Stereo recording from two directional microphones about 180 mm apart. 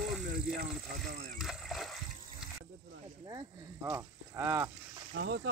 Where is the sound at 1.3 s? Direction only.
Centre (ahead or behind).